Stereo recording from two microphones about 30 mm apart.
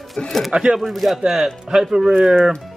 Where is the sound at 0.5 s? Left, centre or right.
Right.